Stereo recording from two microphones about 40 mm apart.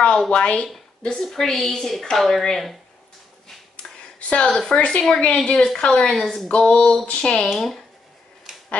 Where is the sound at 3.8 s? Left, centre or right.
Centre.